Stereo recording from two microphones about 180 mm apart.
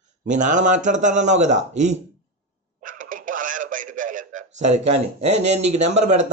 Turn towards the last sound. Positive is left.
turn(degrees=-40)  # may be behind; listen again after turning